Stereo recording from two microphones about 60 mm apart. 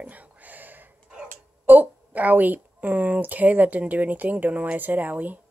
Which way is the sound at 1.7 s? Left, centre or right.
Right.